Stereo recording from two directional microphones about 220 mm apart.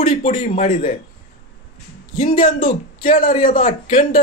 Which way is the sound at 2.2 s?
40° left (ahead or behind).